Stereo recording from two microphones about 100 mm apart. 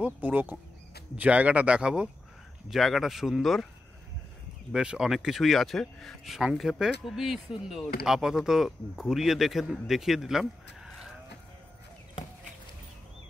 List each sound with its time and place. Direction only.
0.0 s speech: 15° right (ahead or behind)
4.7 s speech: 10° right (ahead or behind)